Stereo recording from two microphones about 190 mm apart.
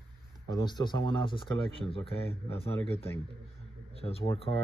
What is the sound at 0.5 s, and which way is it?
Speech, 20° left (ahead or behind).